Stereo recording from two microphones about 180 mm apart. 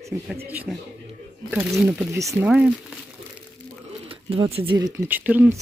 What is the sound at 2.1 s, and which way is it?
Speech, 15° right (ahead or behind).